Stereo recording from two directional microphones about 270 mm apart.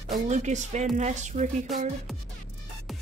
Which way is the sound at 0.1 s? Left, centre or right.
Right.